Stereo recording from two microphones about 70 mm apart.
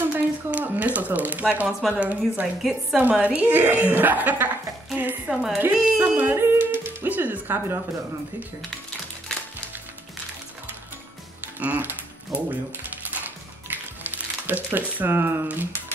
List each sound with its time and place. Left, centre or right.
0.0 s speech: right
1.7 s speech: centre
2.0 s a woman's voice: right
5.3 s speech: centre
5.7 s speech: centre
6.1 s speech: right
11.6 s a woman's voice: right
13.1 s music: right
15.4 s a woman's voice: right